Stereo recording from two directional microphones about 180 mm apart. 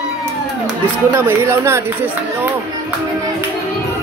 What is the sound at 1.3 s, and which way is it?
Speech, 15° right (ahead or behind).